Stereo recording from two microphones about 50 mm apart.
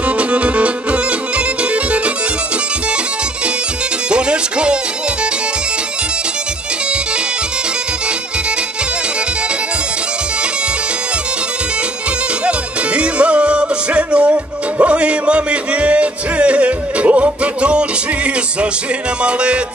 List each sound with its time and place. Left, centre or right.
0.2 s music: right
4.1 s music: right
12.4 s music: right